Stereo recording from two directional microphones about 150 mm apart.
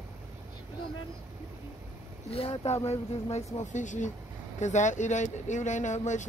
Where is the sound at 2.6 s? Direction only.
45° left (ahead or behind).